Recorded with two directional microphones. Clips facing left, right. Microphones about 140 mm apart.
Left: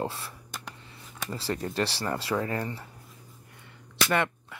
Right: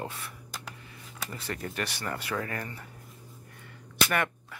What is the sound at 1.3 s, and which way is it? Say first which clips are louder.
Speech: left 6 dB; 30° left (ahead or behind).